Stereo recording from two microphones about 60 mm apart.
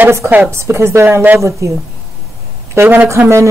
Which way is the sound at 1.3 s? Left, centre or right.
Right.